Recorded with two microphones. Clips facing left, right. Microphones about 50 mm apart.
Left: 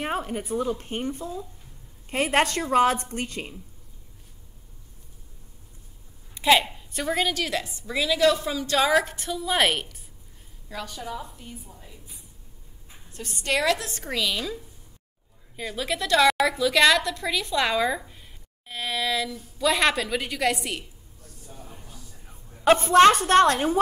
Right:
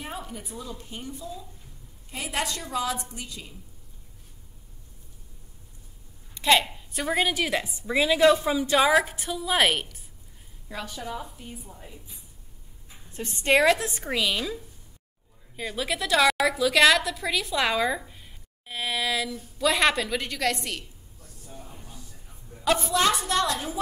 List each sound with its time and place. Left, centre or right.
0.0 s speech: left
6.3 s a woman's voice: centre
13.1 s a woman's voice: right
14.0 s a woman's voice: centre
22.7 s speech: left